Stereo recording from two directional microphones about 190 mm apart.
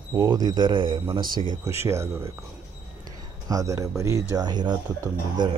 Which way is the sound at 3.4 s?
15° right (ahead or behind).